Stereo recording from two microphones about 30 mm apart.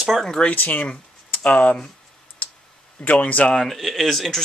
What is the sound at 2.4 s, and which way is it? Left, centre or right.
Clicking, left.